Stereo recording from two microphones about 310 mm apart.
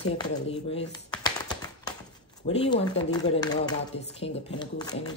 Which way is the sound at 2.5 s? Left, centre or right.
Centre.